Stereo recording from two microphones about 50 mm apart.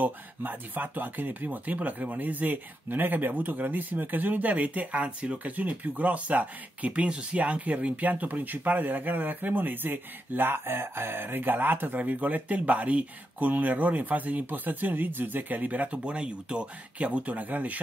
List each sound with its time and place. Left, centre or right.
0.0 s speech: right